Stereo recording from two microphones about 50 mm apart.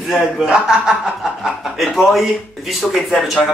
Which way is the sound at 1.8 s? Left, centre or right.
Centre.